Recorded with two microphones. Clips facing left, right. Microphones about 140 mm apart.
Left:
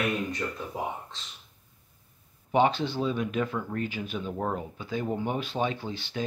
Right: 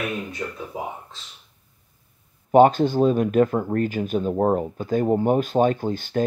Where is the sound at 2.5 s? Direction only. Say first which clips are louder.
Right 9 dB; 45° right (ahead or behind).